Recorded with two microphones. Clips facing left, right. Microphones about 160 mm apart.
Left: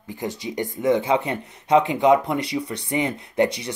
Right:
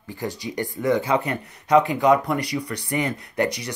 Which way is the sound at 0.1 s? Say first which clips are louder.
Left 1 dB; 20° left (ahead or behind).